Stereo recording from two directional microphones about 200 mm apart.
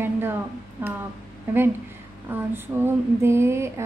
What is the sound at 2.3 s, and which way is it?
A woman's voice, 10° right (ahead or behind).